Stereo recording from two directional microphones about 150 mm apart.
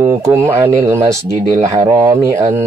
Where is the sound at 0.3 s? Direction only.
15° right (ahead or behind).